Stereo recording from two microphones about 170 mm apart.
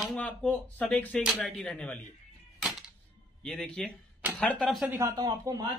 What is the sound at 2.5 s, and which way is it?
Music, centre (ahead or behind).